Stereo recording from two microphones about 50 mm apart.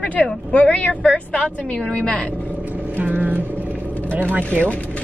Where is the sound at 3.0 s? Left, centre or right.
Right.